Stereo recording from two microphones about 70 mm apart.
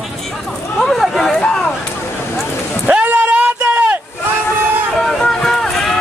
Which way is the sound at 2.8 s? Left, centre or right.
Right.